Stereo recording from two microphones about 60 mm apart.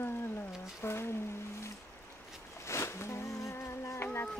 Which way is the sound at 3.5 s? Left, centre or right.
Left.